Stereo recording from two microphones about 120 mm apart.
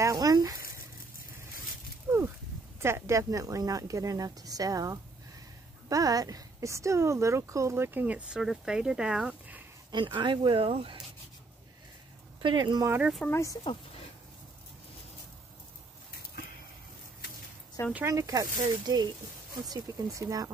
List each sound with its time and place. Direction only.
0.0 s a sound: 30° right (ahead or behind)
2.0 s a sound: 20° right (ahead or behind)
2.8 s speech: 25° right (ahead or behind); by 9.6 s 5° right (ahead or behind)
9.8 s speech: 40° right (ahead or behind)
12.4 s speech: 40° right (ahead or behind)
13.3 s speech: 25° left (ahead or behind)
18.0 s speech: 25° right (ahead or behind)